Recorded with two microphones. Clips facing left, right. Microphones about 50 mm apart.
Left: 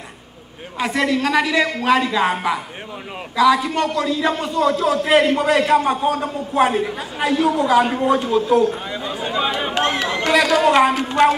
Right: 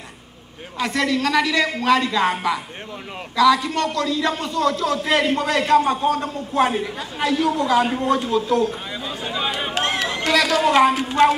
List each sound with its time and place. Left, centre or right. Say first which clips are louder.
0.7 s a man's voice: left 2 dB; centre
10.3 s a man's voice: left 2 dB; centre